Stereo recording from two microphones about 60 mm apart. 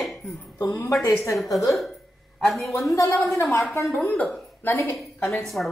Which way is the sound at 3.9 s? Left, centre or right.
Left.